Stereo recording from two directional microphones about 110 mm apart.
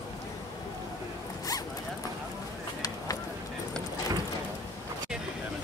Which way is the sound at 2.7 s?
35° left (ahead or behind).